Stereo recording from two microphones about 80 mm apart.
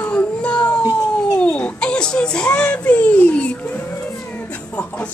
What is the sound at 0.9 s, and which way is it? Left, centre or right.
Whimper, centre.